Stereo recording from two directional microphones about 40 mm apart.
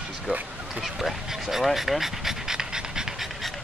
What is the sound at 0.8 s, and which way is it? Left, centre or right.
Dog, centre.